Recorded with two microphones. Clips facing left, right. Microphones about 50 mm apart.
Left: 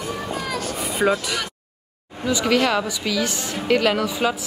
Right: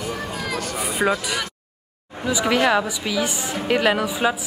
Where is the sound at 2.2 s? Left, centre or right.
Centre.